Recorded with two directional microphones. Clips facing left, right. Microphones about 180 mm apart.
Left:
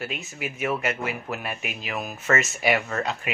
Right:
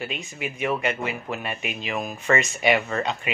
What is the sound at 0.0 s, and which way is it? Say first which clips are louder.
Speech: right 1 dB; 5° left (ahead or behind).